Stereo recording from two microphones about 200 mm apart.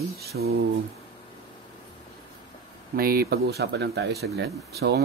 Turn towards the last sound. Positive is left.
turn(degrees=-55)  # may be behind; listen again after turning